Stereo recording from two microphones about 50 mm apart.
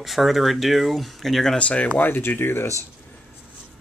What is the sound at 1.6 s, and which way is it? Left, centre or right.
Speech, left.